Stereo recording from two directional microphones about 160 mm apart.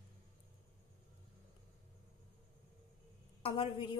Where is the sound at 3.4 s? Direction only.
35° left (ahead or behind).